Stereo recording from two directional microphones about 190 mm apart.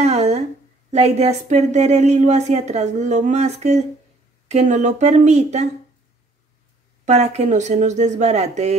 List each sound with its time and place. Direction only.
0.0 s a sound: 35° right (ahead or behind)
0.9 s a woman's voice: 35° right (ahead or behind)
7.1 s a woman's voice: 35° right (ahead or behind)